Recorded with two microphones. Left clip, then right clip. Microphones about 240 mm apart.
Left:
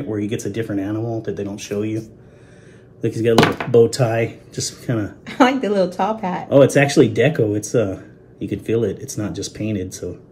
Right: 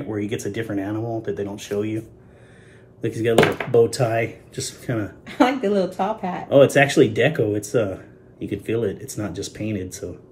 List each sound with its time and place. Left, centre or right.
0.1 s speech: centre
5.2 s a woman's voice: left
6.5 s speech: centre